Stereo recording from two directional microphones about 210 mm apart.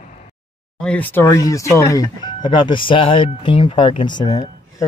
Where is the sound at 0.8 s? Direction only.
5° left (ahead or behind).